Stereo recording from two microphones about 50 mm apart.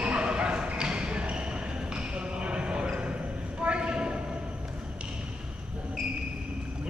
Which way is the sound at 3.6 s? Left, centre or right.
Right.